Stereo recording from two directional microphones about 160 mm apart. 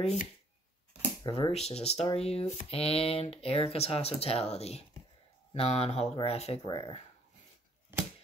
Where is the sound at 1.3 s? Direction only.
40° left (ahead or behind).